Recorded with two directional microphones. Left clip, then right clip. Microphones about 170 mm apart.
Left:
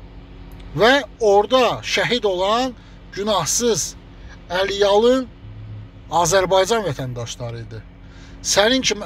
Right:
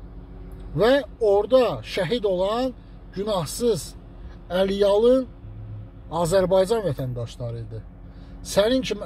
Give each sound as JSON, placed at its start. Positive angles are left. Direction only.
{"t": 0.7, "sound": "speech", "side_deg": -5}